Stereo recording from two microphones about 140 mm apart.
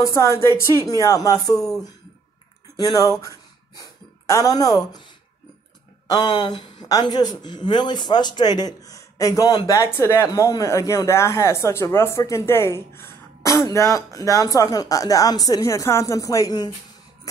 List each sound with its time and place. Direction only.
0.0 s speech: 20° left (ahead or behind)
4.3 s speech: 25° left (ahead or behind)
6.0 s speech: 30° left (ahead or behind)